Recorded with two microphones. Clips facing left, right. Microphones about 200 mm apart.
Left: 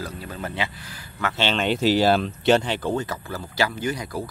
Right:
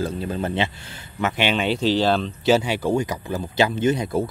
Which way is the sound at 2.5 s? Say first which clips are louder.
Right 2 dB; 10° right (ahead or behind).